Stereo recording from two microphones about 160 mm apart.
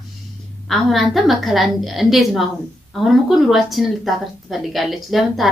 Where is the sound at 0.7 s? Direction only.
Centre (ahead or behind).